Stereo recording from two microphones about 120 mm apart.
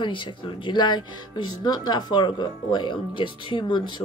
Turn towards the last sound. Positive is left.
turn(degrees=40)  # may be behind; listen again after turning